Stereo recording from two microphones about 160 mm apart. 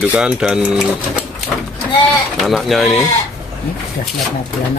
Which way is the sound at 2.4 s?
Centre (ahead or behind).